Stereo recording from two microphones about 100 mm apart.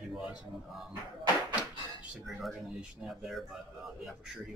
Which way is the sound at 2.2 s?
5° right (ahead or behind).